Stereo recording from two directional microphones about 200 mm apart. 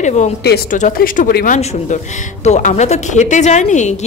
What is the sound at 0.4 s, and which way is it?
Speech, 55° left (ahead or behind).